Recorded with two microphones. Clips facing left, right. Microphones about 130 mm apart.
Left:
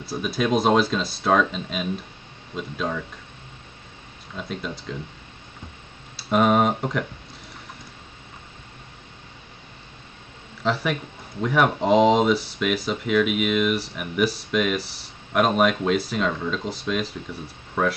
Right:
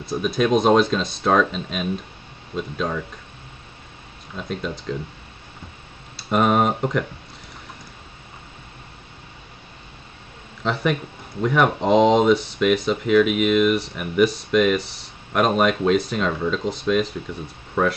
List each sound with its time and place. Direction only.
0.0 s speech: 5° left (ahead or behind)
4.4 s speech: centre (ahead or behind)
6.1 s speech: centre (ahead or behind)
10.6 s speech: centre (ahead or behind)